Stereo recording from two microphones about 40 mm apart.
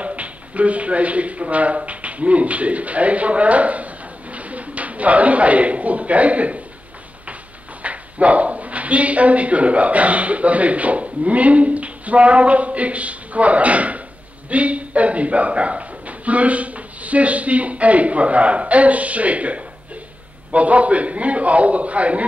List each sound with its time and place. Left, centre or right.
0.0 s speech: right
7.8 s speech: right